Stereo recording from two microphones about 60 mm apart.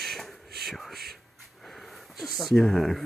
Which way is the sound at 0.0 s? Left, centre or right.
Centre.